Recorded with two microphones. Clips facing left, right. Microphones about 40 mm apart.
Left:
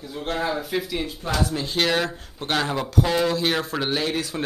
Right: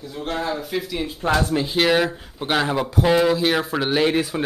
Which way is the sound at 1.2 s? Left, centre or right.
Right.